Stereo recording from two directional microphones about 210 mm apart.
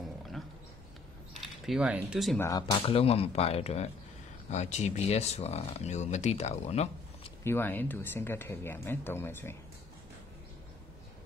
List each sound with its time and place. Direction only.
1.7 s speech: 5° right (ahead or behind)
2.3 s speech: 15° left (ahead or behind); by 7.3 s 30° left (ahead or behind)
7.4 s speech: 10° left (ahead or behind)